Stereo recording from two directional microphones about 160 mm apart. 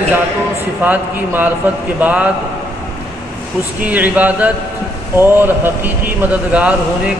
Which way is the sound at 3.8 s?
10° right (ahead or behind).